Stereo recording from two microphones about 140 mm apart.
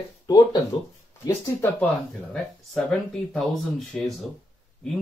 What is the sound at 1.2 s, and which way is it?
Speech, 20° left (ahead or behind).